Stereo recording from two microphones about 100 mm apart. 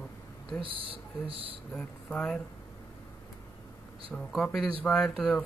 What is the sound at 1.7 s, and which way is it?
Speech, 10° left (ahead or behind).